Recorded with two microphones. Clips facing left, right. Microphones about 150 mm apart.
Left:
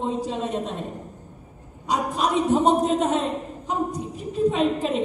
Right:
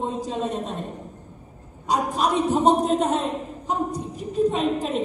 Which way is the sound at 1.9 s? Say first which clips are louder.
Right 1 dB; centre (ahead or behind).